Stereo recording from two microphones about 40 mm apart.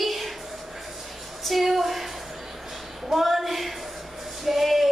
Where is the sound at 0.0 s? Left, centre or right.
Centre.